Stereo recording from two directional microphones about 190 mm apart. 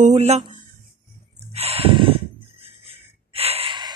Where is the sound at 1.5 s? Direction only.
30° right (ahead or behind).